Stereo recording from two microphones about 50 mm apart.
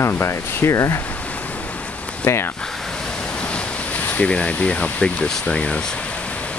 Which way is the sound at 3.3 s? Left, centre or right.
Left.